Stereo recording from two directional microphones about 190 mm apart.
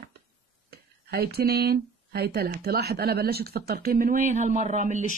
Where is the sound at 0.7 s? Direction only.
55° right (ahead or behind).